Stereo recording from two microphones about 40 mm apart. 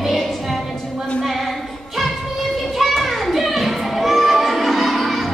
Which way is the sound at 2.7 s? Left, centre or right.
Centre.